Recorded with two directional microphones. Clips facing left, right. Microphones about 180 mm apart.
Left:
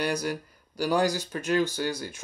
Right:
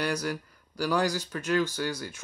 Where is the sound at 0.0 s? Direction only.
20° left (ahead or behind).